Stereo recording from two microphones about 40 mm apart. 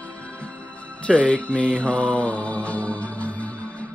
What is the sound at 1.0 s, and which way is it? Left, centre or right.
Mantra, left.